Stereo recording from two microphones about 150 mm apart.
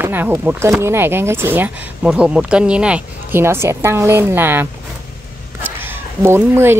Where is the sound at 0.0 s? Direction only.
15° right (ahead or behind).